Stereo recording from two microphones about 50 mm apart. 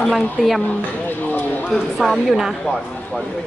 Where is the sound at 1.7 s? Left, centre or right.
Centre.